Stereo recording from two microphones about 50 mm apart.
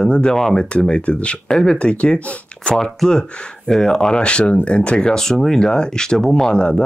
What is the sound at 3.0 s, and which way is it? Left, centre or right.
Speech, centre.